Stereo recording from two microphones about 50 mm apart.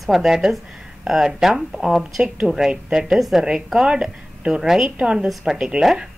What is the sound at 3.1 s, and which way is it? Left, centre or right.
Speech, centre.